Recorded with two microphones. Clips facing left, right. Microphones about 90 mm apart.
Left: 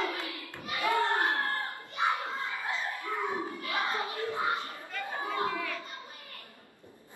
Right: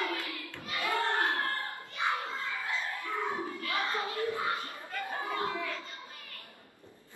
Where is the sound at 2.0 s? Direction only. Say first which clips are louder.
Left 2 dB; 20° left (ahead or behind).